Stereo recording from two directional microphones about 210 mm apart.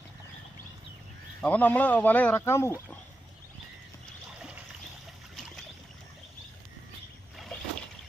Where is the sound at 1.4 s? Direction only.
5° left (ahead or behind).